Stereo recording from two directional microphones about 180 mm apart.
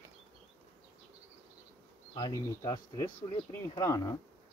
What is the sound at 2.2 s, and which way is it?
Speech, 20° left (ahead or behind).